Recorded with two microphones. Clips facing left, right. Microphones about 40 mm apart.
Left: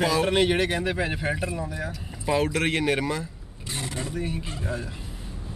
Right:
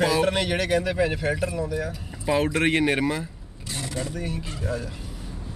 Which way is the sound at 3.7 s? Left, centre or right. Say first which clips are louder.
Right 1 dB; left.